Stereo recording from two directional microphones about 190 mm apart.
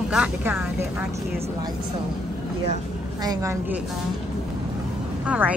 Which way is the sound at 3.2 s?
20° right (ahead or behind).